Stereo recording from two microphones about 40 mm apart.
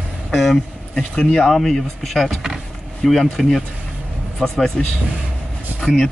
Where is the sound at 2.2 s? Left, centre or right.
Centre.